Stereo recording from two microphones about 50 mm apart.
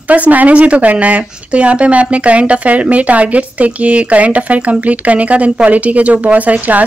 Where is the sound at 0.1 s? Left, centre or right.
Right.